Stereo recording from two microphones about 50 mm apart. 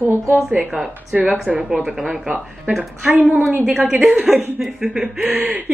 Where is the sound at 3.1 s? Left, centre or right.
Right.